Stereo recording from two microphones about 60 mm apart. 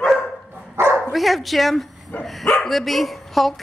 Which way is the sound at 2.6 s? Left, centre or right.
Centre.